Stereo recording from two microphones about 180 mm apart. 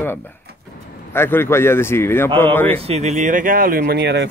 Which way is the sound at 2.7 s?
35° right (ahead or behind).